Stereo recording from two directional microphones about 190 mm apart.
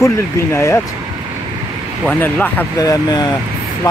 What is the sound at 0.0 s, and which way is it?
Speech, 15° left (ahead or behind).